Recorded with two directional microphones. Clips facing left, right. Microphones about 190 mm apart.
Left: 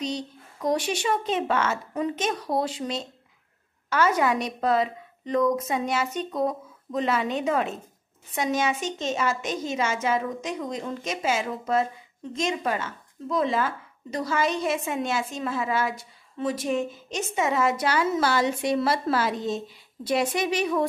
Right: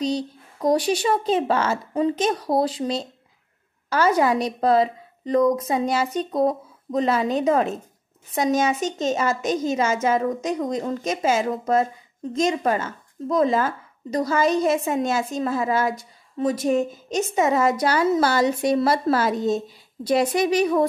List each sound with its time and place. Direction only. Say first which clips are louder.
0.0 s speech: right 6 dB; 35° right (ahead or behind)